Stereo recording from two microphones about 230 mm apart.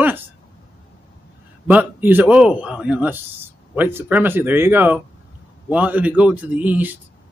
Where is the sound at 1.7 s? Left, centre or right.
Centre.